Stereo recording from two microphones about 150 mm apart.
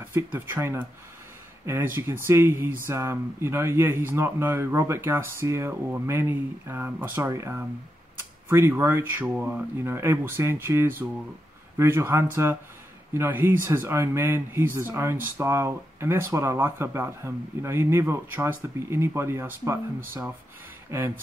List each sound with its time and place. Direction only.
0.1 s speech: 15° right (ahead or behind)
2.0 s speech: 15° right (ahead or behind)
20.9 s speech: 15° right (ahead or behind)